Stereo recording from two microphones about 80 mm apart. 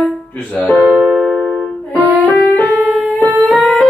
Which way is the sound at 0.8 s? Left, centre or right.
Centre.